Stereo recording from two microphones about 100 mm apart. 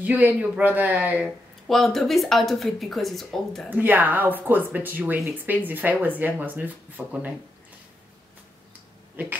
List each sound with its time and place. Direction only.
0.0 s speech: 15° right (ahead or behind)
1.7 s speech: centre (ahead or behind)
3.7 s speech: 20° right (ahead or behind)
9.1 s speech: 15° right (ahead or behind)